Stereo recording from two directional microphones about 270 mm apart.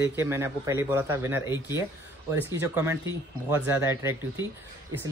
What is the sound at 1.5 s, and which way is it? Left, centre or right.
Speech, centre.